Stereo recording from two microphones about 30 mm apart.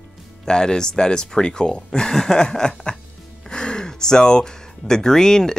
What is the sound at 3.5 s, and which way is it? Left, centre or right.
Gasp, left.